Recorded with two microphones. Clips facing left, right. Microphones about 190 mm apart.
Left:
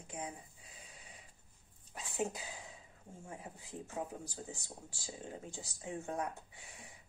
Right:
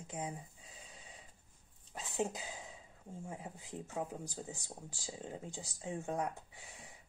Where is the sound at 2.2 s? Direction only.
20° right (ahead or behind).